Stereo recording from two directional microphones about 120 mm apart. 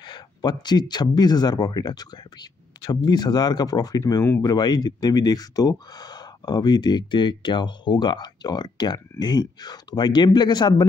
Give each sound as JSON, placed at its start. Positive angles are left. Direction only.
{"t": 0.0, "sound": "speech", "side_deg": 35}